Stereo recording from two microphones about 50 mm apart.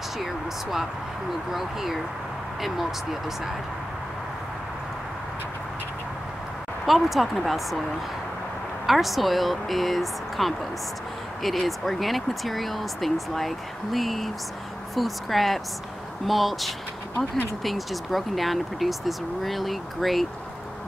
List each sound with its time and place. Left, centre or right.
0.2 s speech: centre
6.9 s speech: centre
8.8 s speech: centre